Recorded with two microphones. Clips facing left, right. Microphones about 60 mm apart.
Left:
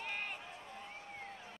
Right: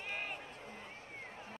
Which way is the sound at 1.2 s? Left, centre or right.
Right.